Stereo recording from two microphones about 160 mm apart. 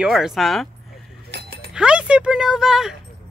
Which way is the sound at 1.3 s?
90° right.